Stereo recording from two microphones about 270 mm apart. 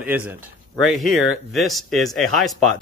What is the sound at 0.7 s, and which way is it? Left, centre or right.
Speech, centre.